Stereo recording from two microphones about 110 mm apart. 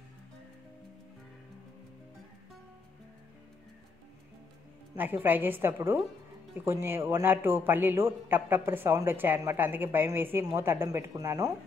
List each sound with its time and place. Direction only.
4.9 s a woman's voice: 15° right (ahead or behind); by 11.5 s 30° right (ahead or behind)